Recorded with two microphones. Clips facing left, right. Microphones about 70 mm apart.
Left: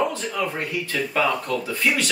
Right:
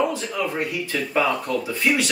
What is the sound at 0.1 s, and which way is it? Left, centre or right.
Speech, centre.